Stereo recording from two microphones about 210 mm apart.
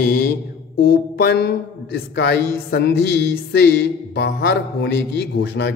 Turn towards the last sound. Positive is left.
turn(degrees=55)  # may be behind; listen again after turning